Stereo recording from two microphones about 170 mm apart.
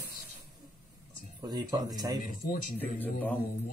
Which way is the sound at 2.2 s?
55° left (ahead or behind).